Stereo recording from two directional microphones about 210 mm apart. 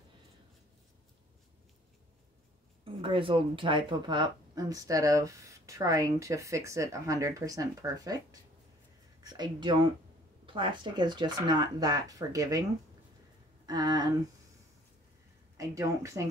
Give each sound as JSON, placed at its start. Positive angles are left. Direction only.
{"t": 2.8, "sound": "speech", "side_deg": -25}
{"t": 13.7, "sound": "speech", "side_deg": -20}
{"t": 15.5, "sound": "speech", "side_deg": -15}